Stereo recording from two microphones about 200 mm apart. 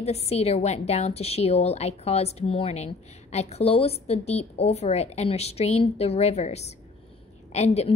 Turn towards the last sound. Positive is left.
turn(degrees=35)  # may be behind; listen again after turning